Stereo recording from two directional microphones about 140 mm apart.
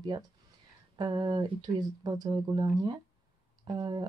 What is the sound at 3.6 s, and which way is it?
Speech, 30° right (ahead or behind).